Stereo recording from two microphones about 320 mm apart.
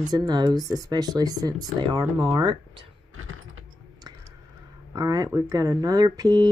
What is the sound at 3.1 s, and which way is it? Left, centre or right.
Typing, right.